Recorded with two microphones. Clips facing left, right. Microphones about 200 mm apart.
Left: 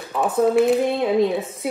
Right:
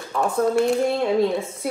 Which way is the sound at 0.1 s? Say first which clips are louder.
Left 2 dB; 5° left (ahead or behind).